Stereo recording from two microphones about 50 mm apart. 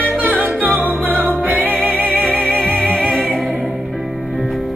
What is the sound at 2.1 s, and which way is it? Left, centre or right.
Music, centre.